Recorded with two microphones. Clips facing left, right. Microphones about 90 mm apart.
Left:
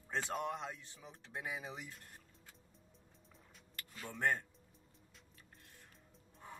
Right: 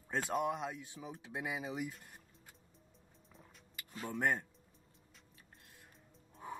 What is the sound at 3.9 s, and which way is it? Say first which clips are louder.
Speech: right 7 dB; 40° right (ahead or behind).